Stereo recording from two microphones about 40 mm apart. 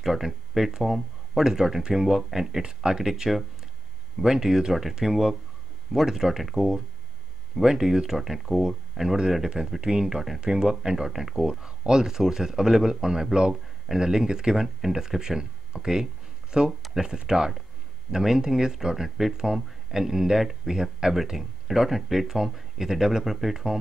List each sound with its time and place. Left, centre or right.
0.0 s a man's voice: centre